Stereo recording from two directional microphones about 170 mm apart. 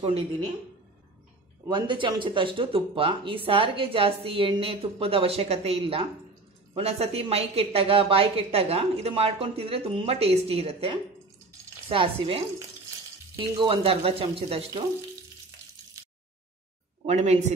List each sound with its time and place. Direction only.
1.7 s speech: 30° right (ahead or behind)
17.0 s speech: 40° right (ahead or behind)